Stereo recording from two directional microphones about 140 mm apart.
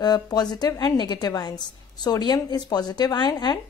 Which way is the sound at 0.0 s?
30° left (ahead or behind).